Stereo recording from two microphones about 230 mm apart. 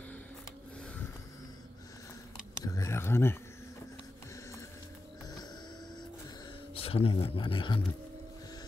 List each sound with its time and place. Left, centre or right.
2.6 s speech: centre
6.7 s speech: left